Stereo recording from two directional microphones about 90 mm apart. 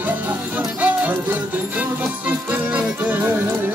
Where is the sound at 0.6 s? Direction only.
15° right (ahead or behind).